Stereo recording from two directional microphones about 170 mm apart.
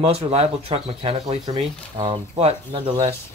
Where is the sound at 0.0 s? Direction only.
35° right (ahead or behind).